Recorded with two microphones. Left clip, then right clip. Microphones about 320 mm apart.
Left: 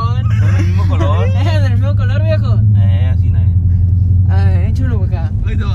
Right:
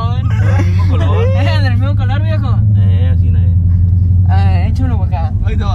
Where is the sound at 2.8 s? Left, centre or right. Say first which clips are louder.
Right 1 dB; centre.